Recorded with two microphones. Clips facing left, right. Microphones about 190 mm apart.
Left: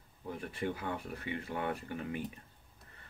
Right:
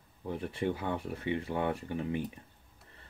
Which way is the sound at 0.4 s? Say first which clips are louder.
Right 4 dB; 25° right (ahead or behind).